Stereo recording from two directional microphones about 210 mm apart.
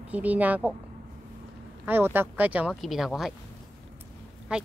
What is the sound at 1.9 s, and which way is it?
Speech, 10° right (ahead or behind).